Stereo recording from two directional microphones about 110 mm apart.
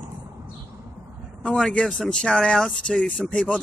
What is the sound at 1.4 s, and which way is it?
Speech, 5° left (ahead or behind).